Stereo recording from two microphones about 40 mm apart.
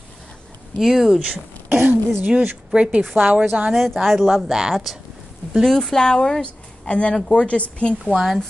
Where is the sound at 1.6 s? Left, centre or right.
Right.